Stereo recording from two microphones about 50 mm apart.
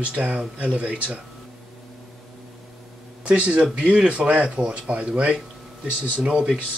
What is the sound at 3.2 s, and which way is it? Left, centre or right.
Speech, right.